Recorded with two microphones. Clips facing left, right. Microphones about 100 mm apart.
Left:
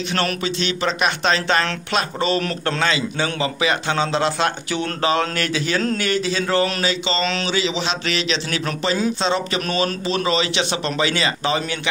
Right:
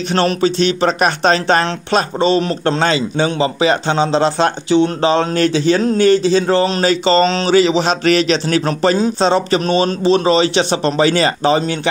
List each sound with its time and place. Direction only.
0.1 s a man's voice: 35° right (ahead or behind)
6.8 s a man's voice: 45° right (ahead or behind)